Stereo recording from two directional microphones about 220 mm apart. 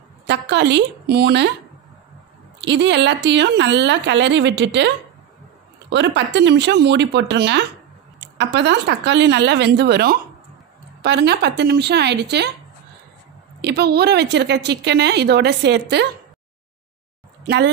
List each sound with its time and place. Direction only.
0.3 s a woman's voice: 50° right (ahead or behind)
2.6 s a woman's voice: 55° right (ahead or behind)
13.6 s a woman's voice: 50° right (ahead or behind)